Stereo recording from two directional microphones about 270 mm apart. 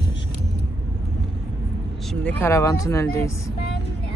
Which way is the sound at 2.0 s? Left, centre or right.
Centre.